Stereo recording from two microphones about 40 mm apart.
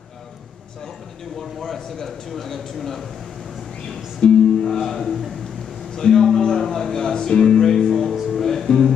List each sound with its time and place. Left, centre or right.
1.4 s speech: centre
3.8 s speech: left
4.6 s speech: centre
7.9 s music: centre